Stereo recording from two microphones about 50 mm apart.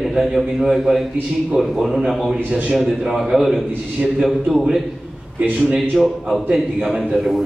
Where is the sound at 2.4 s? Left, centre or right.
Right.